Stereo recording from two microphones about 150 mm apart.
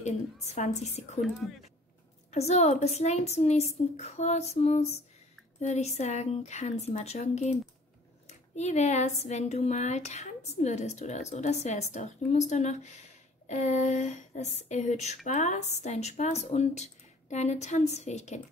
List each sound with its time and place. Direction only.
2.3 s speech: 45° left (ahead or behind)